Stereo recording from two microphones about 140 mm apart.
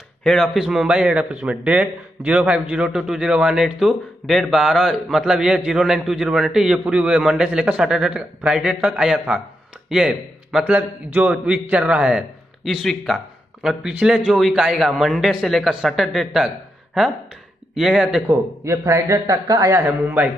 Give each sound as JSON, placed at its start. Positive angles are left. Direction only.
{"t": 0.2, "sound": "a man's voice", "side_deg": 5}
{"t": 18.2, "sound": "speech", "side_deg": -20}